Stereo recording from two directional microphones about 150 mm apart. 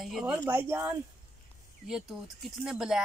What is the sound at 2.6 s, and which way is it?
Speech, 5° right (ahead or behind).